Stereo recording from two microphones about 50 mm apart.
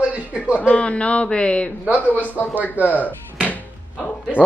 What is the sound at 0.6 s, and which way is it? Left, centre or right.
A woman's voice, left.